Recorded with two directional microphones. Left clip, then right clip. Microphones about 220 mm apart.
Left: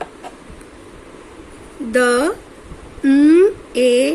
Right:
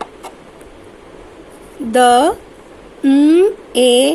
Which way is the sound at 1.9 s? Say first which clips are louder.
Right 5 dB; 10° right (ahead or behind).